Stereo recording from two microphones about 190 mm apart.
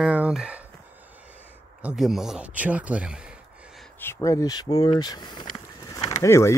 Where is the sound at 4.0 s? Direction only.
15° left (ahead or behind).